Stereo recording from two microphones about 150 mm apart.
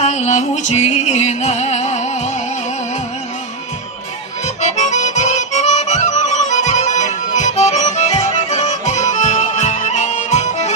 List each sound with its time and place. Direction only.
0.0 s music: 50° left (ahead or behind)
4.6 s music: 50° left (ahead or behind)